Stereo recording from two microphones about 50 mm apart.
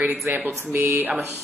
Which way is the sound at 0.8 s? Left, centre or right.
Right.